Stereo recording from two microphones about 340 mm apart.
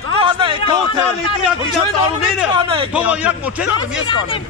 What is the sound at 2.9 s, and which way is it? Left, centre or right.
Speech, centre.